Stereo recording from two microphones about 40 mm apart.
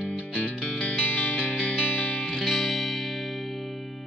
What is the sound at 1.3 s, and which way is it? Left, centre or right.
Music, left.